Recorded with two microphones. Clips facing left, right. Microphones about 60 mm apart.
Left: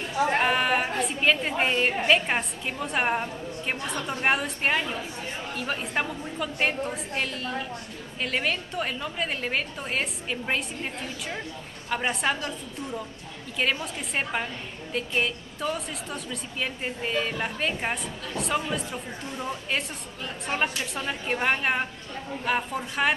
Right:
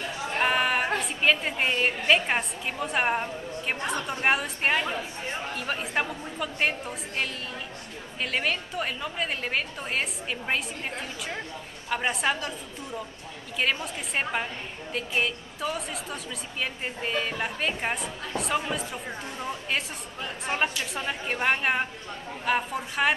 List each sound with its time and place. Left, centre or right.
0.4 s a sound: centre
0.9 s a woman's voice: centre
4.8 s a woman's voice: centre
5.5 s a woman's voice: centre
14.1 s a woman's voice: centre